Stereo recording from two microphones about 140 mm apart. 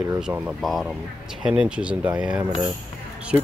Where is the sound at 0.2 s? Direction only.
5° right (ahead or behind).